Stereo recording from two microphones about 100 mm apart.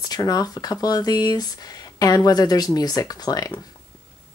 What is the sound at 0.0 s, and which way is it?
Speech, 40° left (ahead or behind).